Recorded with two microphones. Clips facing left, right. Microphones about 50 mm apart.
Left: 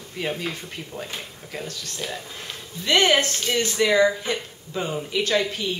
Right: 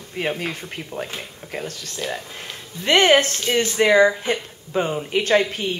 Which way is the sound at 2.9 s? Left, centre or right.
Right.